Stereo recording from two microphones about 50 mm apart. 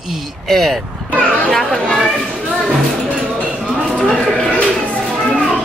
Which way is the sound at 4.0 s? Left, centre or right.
Centre.